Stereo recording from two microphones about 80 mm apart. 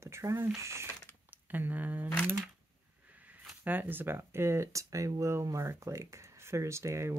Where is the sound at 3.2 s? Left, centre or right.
Right.